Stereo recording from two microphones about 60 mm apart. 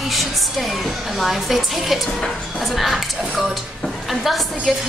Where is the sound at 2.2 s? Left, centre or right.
Centre.